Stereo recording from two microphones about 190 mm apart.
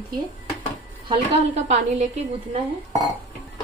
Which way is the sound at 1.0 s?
35° right (ahead or behind).